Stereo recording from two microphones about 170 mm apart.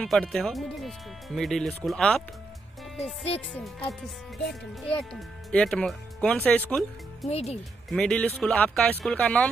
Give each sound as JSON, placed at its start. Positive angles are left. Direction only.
{"t": 0.0, "sound": "speech", "side_deg": 5}
{"t": 3.5, "sound": "speech", "side_deg": 10}
{"t": 5.1, "sound": "speech", "side_deg": 5}
{"t": 7.2, "sound": "speech", "side_deg": 40}
{"t": 7.9, "sound": "speech", "side_deg": 5}